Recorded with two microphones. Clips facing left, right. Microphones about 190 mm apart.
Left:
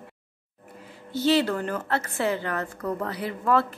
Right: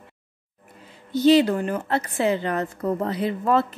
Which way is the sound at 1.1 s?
15° right (ahead or behind).